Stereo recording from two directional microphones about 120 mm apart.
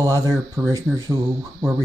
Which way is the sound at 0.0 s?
25° right (ahead or behind).